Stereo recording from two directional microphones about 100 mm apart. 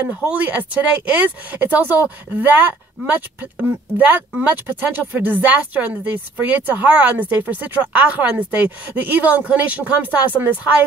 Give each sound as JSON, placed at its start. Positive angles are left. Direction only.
{"t": 0.3, "sound": "speech", "side_deg": -15}